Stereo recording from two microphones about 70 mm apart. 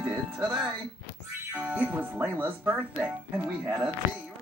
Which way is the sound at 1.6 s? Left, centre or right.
Right.